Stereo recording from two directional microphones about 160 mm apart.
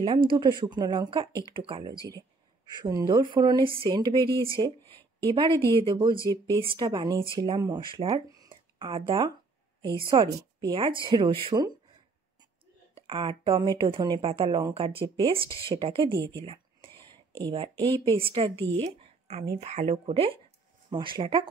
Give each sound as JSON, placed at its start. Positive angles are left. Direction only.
{"t": 0.3, "sound": "speech", "side_deg": -30}
{"t": 8.3, "sound": "a sound", "side_deg": -30}
{"t": 9.8, "sound": "a woman's voice", "side_deg": -30}
{"t": 12.9, "sound": "speech", "side_deg": -30}
{"t": 16.3, "sound": "a sound", "side_deg": -35}
{"t": 17.9, "sound": "speech", "side_deg": -30}